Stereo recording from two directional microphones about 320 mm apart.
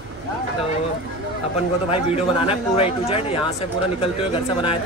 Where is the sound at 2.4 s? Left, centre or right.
Centre.